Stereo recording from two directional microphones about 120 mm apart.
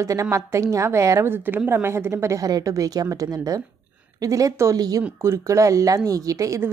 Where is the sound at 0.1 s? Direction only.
25° right (ahead or behind).